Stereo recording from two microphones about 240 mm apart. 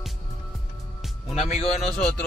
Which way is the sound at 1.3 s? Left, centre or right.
Left.